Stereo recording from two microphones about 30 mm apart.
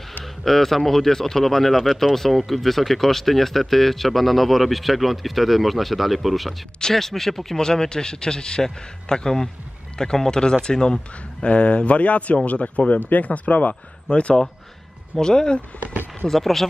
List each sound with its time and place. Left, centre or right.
0.2 s speech: centre
6.8 s speech: centre
11.4 s speech: left
13.0 s speech: left
14.1 s speech: left
15.1 s speech: left
16.3 s speech: centre